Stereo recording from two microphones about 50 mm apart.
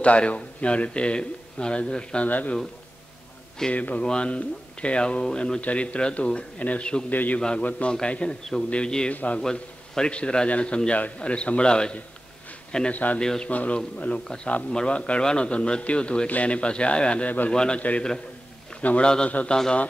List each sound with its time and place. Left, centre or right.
0.0 s a man's voice: left
2.2 s a man's voice: left
3.7 s a man's voice: left
4.0 s a man's voice: centre
7.1 s a man's voice: left
7.3 s a man's voice: left
9.1 s a man's voice: left
9.4 s a man's voice: centre
12.9 s a man's voice: left
13.2 s a man's voice: centre
13.5 s a man's voice: left
14.2 s a man's voice: centre
17.5 s a man's voice: centre
19.0 s a man's voice: centre